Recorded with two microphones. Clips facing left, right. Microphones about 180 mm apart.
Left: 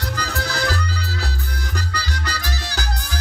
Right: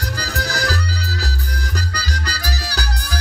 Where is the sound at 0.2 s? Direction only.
40° right (ahead or behind).